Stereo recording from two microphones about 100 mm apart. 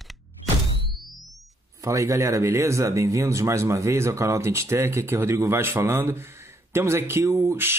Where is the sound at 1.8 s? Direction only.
30° right (ahead or behind).